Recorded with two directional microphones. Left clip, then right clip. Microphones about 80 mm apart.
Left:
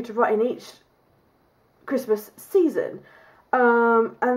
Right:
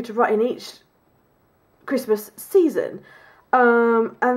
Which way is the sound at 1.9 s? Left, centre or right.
Right.